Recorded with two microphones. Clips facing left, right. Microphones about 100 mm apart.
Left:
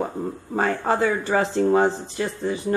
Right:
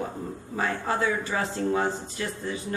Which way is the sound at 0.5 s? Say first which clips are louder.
Left 6 dB; 45° left (ahead or behind).